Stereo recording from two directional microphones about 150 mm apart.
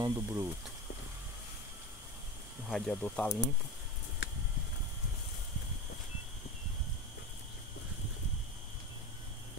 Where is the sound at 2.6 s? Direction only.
Centre (ahead or behind).